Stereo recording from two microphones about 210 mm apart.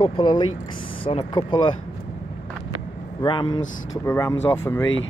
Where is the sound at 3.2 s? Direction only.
20° left (ahead or behind).